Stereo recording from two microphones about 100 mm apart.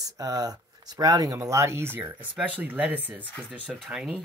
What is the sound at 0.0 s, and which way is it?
Speech, 35° right (ahead or behind).